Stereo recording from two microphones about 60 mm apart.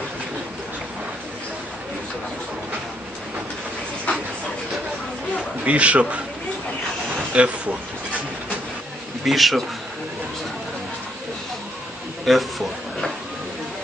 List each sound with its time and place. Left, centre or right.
5.6 s a man's voice: right
7.3 s a man's voice: right
9.2 s a man's voice: centre
12.3 s a man's voice: centre